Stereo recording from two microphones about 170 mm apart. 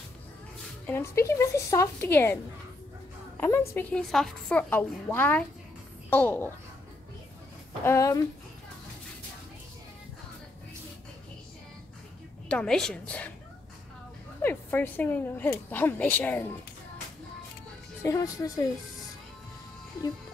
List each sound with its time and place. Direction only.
0.8 s a woman's voice: 15° left (ahead or behind)
3.3 s a woman's voice: 15° left (ahead or behind)
7.8 s a woman's voice: 15° left (ahead or behind)
12.4 s a woman's voice: 5° left (ahead or behind)
14.4 s a woman's voice: 10° left (ahead or behind)
18.0 s speech: 20° left (ahead or behind)